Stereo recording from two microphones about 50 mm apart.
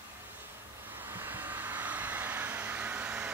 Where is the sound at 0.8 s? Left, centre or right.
Right.